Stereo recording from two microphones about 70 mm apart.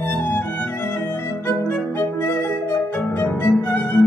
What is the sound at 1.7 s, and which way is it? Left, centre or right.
Music, left.